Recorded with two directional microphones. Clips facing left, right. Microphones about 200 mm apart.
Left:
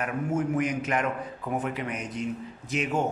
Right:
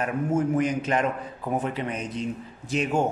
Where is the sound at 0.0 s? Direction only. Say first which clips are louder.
Right 3 dB; 30° right (ahead or behind).